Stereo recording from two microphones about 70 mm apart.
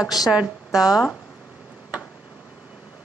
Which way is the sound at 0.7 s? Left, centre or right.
Centre.